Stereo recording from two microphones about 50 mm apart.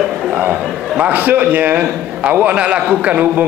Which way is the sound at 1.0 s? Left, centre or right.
Right.